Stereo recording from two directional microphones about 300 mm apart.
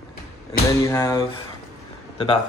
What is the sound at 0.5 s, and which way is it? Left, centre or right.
Speech, centre.